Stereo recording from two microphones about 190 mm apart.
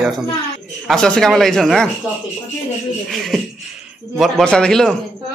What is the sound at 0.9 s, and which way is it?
Speech, 5° left (ahead or behind).